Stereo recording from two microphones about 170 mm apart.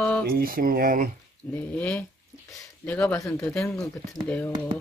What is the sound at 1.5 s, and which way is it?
Speech, 10° left (ahead or behind).